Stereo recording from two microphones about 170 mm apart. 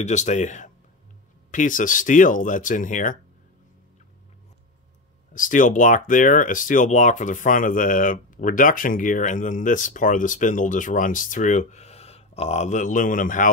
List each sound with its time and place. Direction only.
0.0 s speech: 45° left (ahead or behind)
5.3 s speech: 50° left (ahead or behind)